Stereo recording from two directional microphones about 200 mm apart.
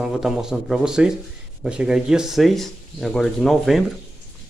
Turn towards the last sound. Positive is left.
turn(degrees=0)  # may be behind; listen again after turning